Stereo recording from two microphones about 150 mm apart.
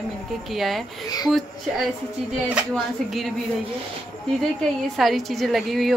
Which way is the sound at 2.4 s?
5° right (ahead or behind).